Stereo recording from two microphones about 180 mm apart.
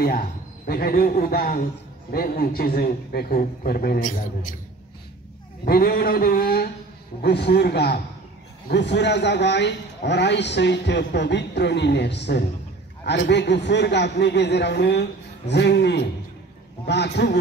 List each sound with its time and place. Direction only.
0.0 s a man's voice: 55° left (ahead or behind)
5.7 s a man's voice: 55° left (ahead or behind)